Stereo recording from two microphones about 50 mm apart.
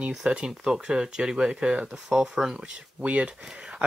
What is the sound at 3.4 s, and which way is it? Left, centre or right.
Speech, centre.